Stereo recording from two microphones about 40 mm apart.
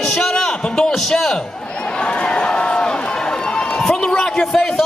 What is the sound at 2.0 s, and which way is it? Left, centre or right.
Run, left.